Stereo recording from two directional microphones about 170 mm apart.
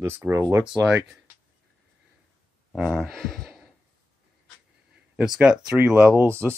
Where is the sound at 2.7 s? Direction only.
Centre (ahead or behind).